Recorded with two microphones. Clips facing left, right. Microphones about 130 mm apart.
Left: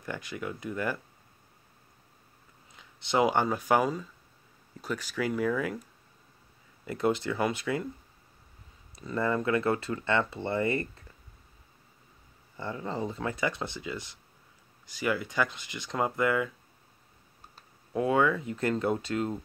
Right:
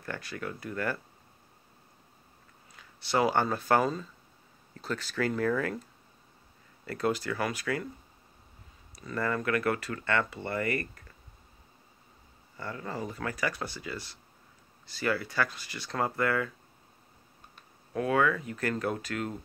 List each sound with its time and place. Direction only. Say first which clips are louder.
0.0 s speech: left 1 dB; 15° left (ahead or behind)
2.7 s speech: left 1 dB; 20° left (ahead or behind)
8.9 s speech: left 3 dB; 25° left (ahead or behind)
12.5 s speech: left 3 dB; 25° left (ahead or behind)
17.9 s speech: left 1 dB; 20° left (ahead or behind)